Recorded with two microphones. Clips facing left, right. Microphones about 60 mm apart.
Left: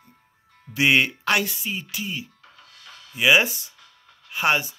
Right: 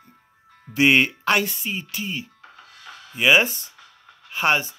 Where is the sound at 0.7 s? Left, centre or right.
Centre.